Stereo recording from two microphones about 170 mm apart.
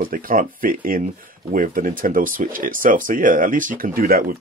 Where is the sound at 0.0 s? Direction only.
55° right (ahead or behind).